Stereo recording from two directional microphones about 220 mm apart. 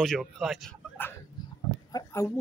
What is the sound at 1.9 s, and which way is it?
Roaring cats, 15° left (ahead or behind).